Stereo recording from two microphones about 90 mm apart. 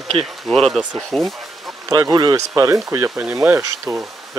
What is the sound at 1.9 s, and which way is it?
Speech, 45° right (ahead or behind).